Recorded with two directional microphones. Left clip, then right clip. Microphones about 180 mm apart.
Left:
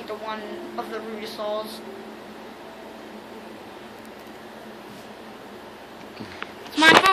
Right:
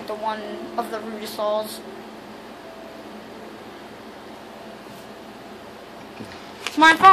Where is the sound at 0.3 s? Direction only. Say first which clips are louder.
Right 4 dB; 35° right (ahead or behind).